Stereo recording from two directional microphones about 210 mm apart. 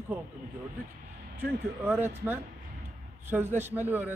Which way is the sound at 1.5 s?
5° right (ahead or behind).